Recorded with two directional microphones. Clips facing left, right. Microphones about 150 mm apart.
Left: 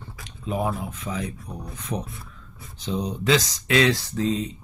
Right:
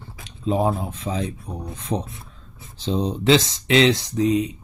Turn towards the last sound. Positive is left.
turn(degrees=-15)  # may be behind; listen again after turning